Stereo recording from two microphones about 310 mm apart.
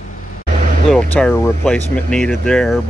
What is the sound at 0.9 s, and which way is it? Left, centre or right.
Speech, centre.